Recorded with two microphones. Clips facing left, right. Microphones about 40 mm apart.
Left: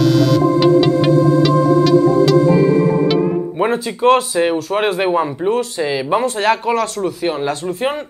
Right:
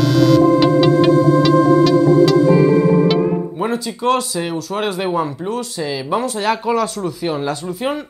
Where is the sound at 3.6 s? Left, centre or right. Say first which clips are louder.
Left 6 dB; left.